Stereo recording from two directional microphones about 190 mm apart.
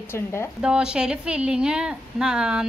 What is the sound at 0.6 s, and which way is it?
A woman's voice, 5° right (ahead or behind).